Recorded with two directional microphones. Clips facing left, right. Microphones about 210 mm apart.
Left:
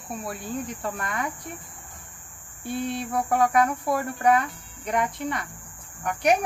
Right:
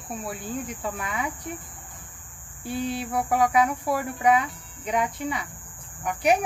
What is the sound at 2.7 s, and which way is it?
Speech, 5° right (ahead or behind).